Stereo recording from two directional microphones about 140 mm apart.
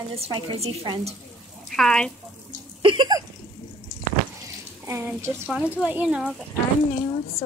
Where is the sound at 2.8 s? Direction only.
35° right (ahead or behind).